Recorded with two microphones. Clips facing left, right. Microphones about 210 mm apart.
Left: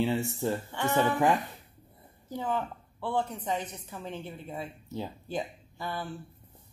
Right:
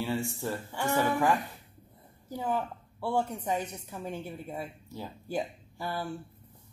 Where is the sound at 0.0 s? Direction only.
20° left (ahead or behind).